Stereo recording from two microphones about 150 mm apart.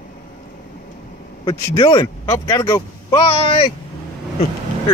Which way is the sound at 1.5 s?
25° left (ahead or behind).